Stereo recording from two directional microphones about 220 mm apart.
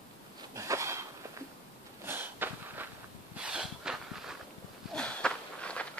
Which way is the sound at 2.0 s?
10° right (ahead or behind).